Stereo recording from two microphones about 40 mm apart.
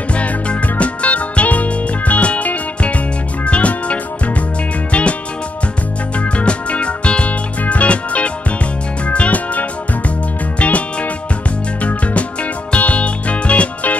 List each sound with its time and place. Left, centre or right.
0.1 s music: left
6.1 s music: left